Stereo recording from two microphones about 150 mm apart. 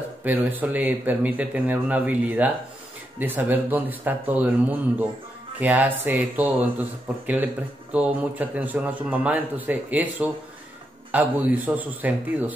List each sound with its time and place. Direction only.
0.2 s speech: 10° right (ahead or behind)